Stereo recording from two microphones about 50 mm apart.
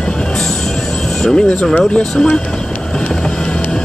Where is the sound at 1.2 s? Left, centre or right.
Centre.